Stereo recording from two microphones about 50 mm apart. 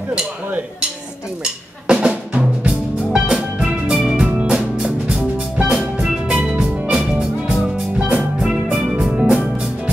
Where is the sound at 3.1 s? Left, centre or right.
Centre.